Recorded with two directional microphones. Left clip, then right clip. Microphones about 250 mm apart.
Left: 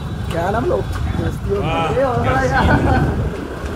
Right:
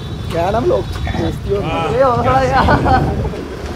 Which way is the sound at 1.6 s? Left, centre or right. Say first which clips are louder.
Right 4 dB; centre.